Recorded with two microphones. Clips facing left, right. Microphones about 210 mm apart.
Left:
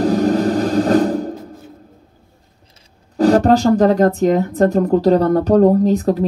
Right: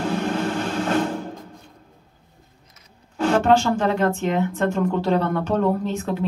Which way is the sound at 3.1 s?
35° left (ahead or behind).